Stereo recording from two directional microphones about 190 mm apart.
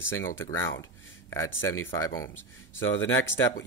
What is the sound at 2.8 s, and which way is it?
Speech, 90° left.